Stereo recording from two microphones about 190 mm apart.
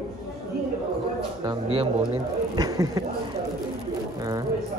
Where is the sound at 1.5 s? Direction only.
30° right (ahead or behind).